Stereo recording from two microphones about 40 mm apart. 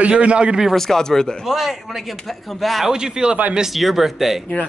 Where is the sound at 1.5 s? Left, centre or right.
Centre.